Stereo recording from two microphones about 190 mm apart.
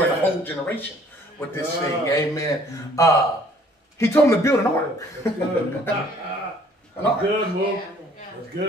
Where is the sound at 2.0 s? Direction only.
15° left (ahead or behind).